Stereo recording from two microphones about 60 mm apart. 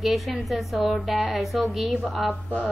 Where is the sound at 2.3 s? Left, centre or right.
Left.